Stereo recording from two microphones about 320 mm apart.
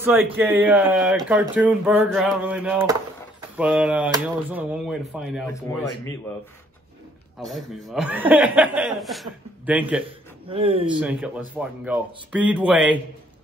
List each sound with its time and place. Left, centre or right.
0.0 s speech: centre
7.8 s speech: centre
10.0 s a man's voice: centre
11.0 s speech: centre